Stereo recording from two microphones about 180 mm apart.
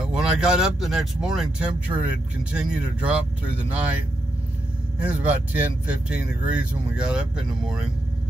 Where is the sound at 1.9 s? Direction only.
25° right (ahead or behind).